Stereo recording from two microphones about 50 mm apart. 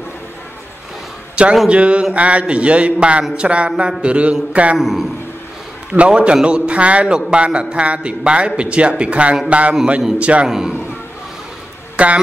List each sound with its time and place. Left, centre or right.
1.3 s a sound: right
1.7 s a man's voice: right
4.7 s a man's voice: centre
5.9 s a man's voice: right
10.5 s a man's voice: centre
12.0 s a man's voice: right